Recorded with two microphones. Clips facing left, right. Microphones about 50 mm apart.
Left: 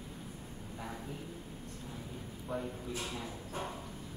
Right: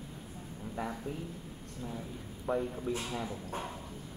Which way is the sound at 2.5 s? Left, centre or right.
Right.